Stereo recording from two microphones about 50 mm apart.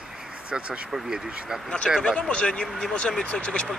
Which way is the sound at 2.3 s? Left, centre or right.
Left.